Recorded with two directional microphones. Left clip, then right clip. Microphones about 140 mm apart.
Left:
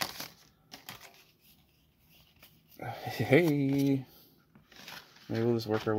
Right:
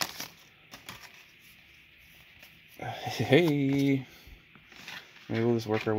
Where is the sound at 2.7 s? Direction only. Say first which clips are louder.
Right 3 dB; 5° right (ahead or behind).